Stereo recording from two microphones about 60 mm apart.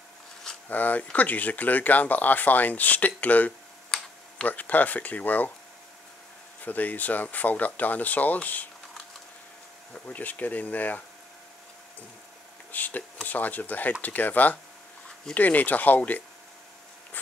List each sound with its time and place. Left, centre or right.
0.7 s speech: left
3.9 s tick-tock: centre
4.5 s speech: left
6.6 s speech: left
10.0 s speech: left
12.7 s speech: left